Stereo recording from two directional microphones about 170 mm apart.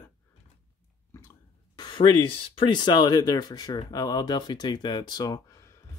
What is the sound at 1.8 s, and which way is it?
Speech, 25° left (ahead or behind).